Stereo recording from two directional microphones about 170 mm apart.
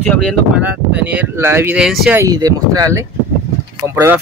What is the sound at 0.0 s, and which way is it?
Speech, 5° left (ahead or behind).